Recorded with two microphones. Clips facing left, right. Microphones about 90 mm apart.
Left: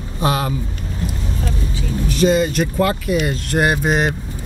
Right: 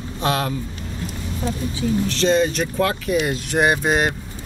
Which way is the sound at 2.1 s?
10° left (ahead or behind).